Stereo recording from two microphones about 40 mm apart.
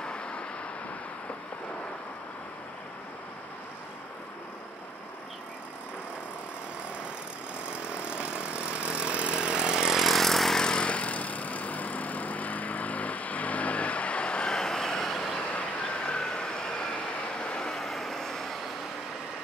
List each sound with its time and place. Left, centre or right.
0.0 s vehicle: left
7.7 s chainsaw: right; by 10.0 s centre
10.0 s vehicle: centre
10.6 s vehicle: left
14.5 s vehicle: centre
15.2 s vehicle: left
16.2 s emergency vehicle: centre
16.4 s vehicle: centre
17.6 s vehicle: centre